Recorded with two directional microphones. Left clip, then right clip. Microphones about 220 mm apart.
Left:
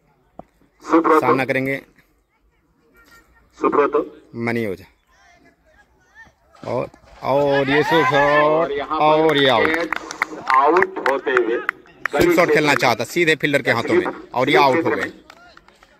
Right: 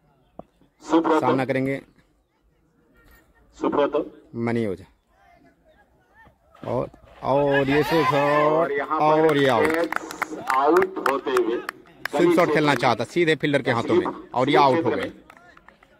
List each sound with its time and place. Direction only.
0.7 s a sound: 45° right (ahead or behind)
1.3 s speech: centre (ahead or behind)
3.5 s a man's voice: 50° right (ahead or behind)
4.3 s speech: centre (ahead or behind)
6.2 s a sound: 35° right (ahead or behind)
6.5 s speech: centre (ahead or behind)
8.6 s speech: 25° right (ahead or behind)
8.9 s speech: 5° right (ahead or behind)
10.1 s a man's voice: 40° right (ahead or behind); by 12.4 s 60° right (ahead or behind)
12.5 s speech: centre (ahead or behind)
13.9 s a man's voice: 55° right (ahead or behind)
14.3 s speech: centre (ahead or behind)